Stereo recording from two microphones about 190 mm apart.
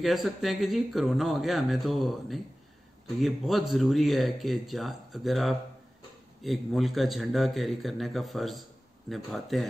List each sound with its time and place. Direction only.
0.0 s speech: centre (ahead or behind)